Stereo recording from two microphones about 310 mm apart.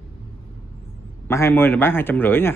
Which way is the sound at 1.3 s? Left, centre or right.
Centre.